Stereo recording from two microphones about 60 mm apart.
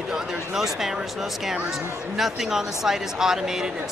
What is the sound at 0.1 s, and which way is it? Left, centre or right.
Speech, centre.